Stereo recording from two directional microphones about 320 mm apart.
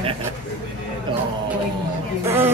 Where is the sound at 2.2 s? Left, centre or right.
Centre.